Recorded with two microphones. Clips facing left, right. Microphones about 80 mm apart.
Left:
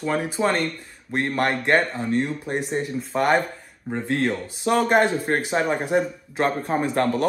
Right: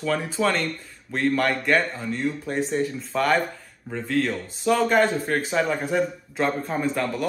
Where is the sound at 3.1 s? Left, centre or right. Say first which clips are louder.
Left 2 dB; left.